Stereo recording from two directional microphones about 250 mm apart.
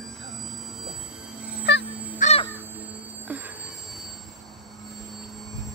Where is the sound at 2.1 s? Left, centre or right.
Left.